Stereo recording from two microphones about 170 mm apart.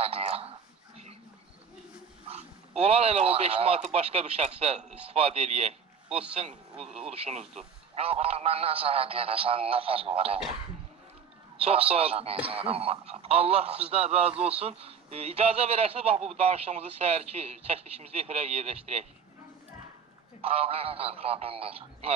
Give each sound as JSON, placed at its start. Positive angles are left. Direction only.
{"t": 0.0, "sound": "a sound", "side_deg": -35}
{"t": 2.8, "sound": "a man's voice", "side_deg": -35}
{"t": 11.6, "sound": "a man's voice", "side_deg": -35}
{"t": 20.4, "sound": "a man's voice", "side_deg": -35}